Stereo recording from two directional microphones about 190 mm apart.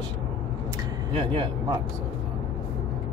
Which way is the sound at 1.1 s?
25° right (ahead or behind).